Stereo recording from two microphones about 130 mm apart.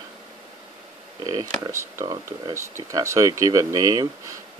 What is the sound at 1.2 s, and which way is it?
Speech, 30° right (ahead or behind).